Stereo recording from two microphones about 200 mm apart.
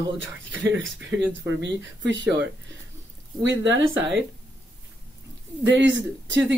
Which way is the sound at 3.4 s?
70° right (ahead or behind).